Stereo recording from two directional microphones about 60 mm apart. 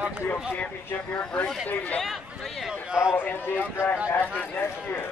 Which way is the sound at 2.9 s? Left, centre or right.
Centre.